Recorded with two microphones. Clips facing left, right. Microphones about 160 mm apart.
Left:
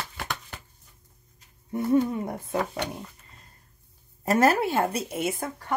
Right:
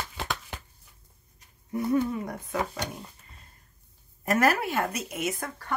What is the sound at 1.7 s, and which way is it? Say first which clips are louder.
Speech: left 3 dB; 25° left (ahead or behind).